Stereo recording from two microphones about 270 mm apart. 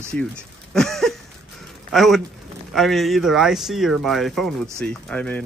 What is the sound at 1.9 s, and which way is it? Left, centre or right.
A man's voice, centre.